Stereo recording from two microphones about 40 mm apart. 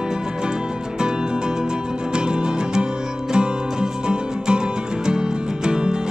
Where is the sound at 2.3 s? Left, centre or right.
Right.